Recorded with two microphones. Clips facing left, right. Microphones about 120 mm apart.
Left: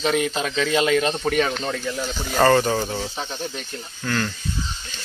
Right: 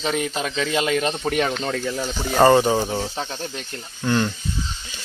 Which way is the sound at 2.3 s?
15° right (ahead or behind).